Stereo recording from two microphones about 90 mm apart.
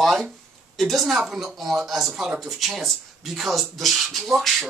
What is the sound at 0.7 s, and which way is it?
Speech, centre (ahead or behind).